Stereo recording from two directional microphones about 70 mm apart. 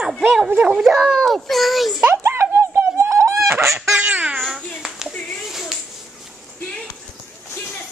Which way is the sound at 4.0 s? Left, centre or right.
Centre.